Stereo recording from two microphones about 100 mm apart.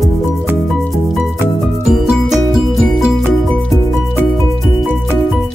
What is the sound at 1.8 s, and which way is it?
Music, 5° right (ahead or behind).